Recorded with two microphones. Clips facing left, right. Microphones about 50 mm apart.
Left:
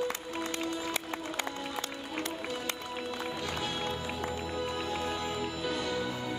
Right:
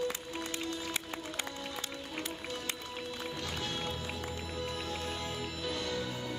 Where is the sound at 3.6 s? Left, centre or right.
Centre.